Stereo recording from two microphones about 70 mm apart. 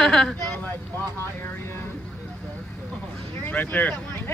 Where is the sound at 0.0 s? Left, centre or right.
Centre.